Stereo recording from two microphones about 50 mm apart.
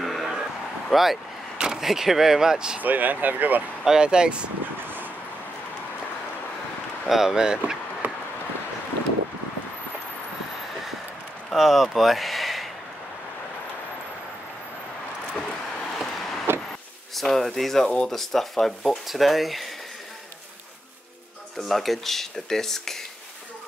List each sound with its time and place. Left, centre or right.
0.0 s a sound: centre
0.9 s speech: centre
2.8 s speech: right
3.8 s speech: centre
7.1 s speech: centre
8.0 s a sound: right
11.5 s speech: centre
15.9 s a sound: centre
17.1 s speech: centre
17.8 s speech: centre
18.1 s speech: centre
21.5 s speech: centre